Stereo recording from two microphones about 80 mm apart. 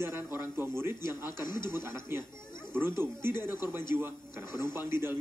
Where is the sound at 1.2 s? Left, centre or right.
Left.